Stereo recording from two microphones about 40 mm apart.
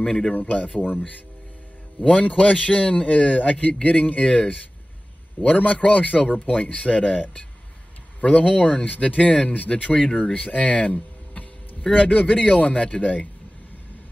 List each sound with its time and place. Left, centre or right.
0.0 s speech: centre
0.3 s speech: left
2.2 s speech: left